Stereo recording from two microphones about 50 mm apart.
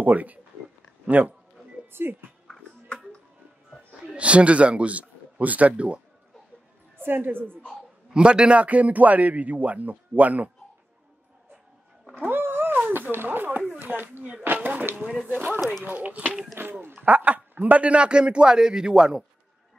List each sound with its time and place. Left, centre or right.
0.0 s a man's voice: right
1.9 s a woman's voice: right
4.2 s a man's voice: right
7.0 s a woman's voice: right
8.1 s a man's voice: centre
12.2 s cat: right
12.7 s a sound: right
15.2 s a man's voice: right
16.6 s a woman's voice: right
17.0 s a man's voice: right; by 19.2 s centre